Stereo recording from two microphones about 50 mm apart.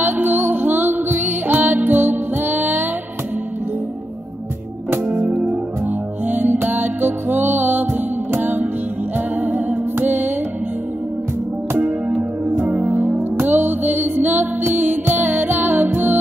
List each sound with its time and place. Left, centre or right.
0.0 s music: right
6.2 s music: right
12.7 s music: right